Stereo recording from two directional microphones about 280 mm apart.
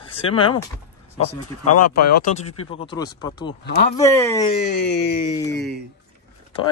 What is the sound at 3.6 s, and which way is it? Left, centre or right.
Speech, left.